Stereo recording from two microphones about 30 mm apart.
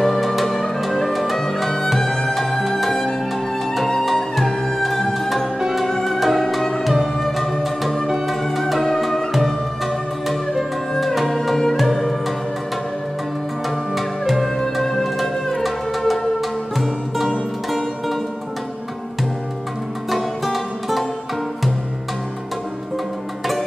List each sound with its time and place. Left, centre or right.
0.0 s music: centre
2.0 s music: centre
4.0 s music: centre
8.5 s music: centre
10.2 s music: centre
11.7 s music: centre
13.9 s music: centre
14.6 s music: centre
20.1 s music: centre